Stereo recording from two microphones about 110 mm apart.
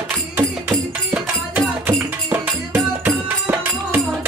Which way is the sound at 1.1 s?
15° right (ahead or behind).